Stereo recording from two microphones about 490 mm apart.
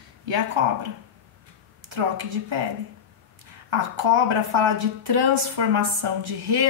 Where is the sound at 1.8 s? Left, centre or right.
Right.